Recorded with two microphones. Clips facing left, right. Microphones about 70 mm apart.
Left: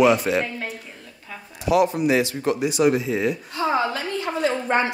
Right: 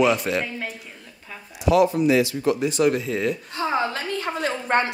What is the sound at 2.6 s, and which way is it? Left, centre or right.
Speech, centre.